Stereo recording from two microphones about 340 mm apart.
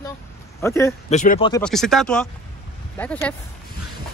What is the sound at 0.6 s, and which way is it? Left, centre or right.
Speech, centre.